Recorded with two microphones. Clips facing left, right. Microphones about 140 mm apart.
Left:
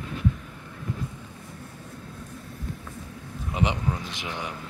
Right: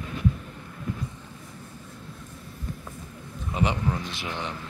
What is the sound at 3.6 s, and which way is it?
Speech, 15° left (ahead or behind).